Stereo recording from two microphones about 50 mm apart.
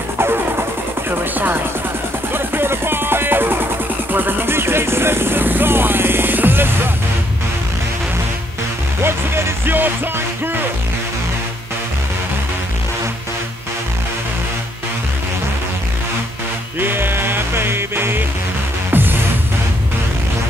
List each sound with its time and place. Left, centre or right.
0.2 s music: right
1.3 s music: right
9.0 s music: right
16.8 s music: right